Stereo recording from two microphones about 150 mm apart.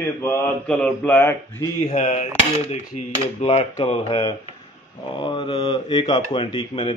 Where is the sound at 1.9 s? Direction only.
50° left (ahead or behind).